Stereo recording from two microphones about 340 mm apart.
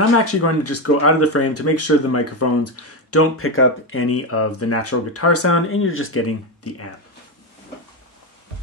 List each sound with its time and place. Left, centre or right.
0.2 s speech: left